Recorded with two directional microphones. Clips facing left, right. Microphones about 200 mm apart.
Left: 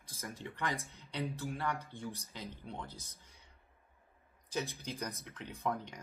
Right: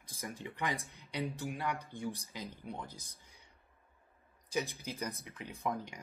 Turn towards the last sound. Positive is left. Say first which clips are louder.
# even
turn(degrees=-15)  # may be behind; listen again after turning